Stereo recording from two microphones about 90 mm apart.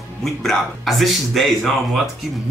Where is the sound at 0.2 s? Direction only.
5° left (ahead or behind).